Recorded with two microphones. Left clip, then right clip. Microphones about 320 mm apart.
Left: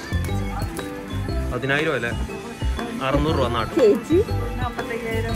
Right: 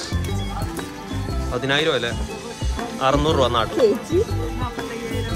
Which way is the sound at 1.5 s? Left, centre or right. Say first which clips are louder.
Right 2 dB; centre.